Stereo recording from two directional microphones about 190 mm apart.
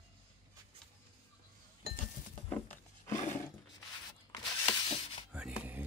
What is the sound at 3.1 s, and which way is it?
Roar, 40° left (ahead or behind).